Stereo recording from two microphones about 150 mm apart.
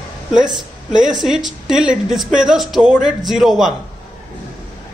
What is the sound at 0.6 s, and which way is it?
Speech, 5° right (ahead or behind).